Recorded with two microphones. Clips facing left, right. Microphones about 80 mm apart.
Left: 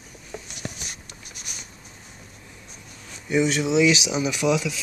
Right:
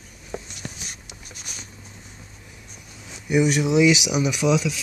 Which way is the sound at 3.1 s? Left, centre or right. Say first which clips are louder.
Right 2 dB; centre.